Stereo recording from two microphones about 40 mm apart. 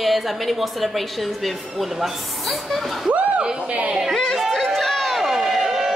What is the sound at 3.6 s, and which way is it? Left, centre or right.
Speech, right.